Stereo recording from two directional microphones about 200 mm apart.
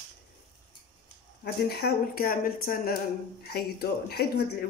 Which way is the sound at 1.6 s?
50° left (ahead or behind).